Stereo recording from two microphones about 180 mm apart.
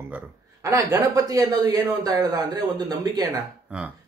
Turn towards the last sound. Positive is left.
turn(degrees=-10)  # may be behind; listen again after turning